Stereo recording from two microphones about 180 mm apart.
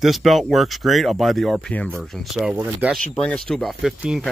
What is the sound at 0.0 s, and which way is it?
Speech, centre (ahead or behind).